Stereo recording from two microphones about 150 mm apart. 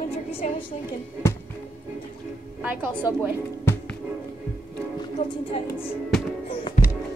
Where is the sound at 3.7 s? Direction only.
15° left (ahead or behind).